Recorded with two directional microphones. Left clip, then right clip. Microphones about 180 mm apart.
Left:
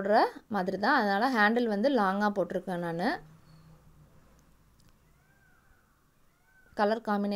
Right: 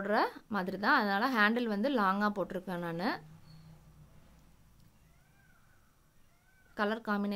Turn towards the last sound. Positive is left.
turn(degrees=15)  # may be behind; listen again after turning